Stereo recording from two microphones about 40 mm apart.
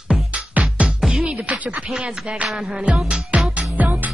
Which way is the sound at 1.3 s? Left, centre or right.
Right.